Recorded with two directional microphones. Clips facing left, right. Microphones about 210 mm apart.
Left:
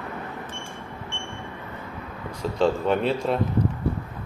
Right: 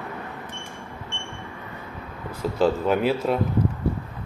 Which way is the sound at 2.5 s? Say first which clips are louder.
Right 1 dB; 5° right (ahead or behind).